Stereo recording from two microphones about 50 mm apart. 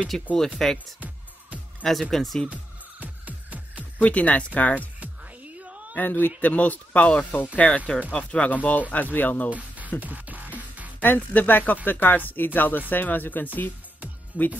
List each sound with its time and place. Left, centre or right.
0.1 s speech: centre
2.5 s music: right
4.0 s speech: left
5.6 s a sound: right
5.9 s speech: left
9.5 s music: right
11.0 s speech: left
14.3 s speech: right